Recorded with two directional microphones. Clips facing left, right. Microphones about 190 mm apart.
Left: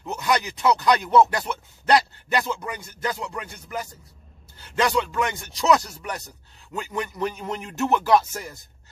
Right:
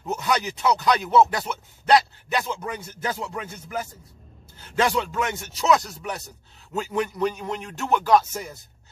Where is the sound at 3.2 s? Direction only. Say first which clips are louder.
Right 1 dB; 5° right (ahead or behind).